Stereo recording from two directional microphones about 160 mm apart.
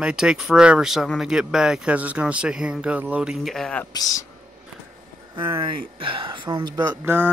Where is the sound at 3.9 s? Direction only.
20° left (ahead or behind).